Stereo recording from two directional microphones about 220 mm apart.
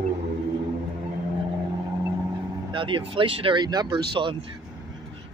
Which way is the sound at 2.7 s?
20° right (ahead or behind).